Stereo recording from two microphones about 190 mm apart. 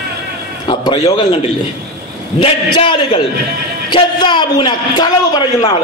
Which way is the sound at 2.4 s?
30° left (ahead or behind).